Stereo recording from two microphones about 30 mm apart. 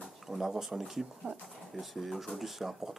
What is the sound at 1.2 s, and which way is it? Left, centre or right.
Speech, right.